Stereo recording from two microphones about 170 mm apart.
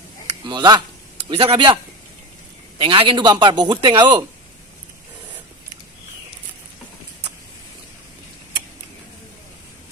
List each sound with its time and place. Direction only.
0.4 s a man's voice: 25° right (ahead or behind)
2.8 s a man's voice: 30° right (ahead or behind)